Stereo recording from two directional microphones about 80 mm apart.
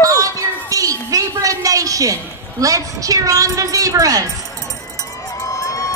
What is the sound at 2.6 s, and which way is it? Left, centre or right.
A woman's voice, right.